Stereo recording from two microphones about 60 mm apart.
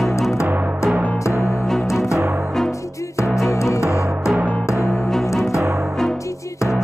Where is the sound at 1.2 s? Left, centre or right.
Left.